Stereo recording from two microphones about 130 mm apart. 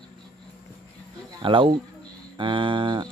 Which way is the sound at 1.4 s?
40° right (ahead or behind).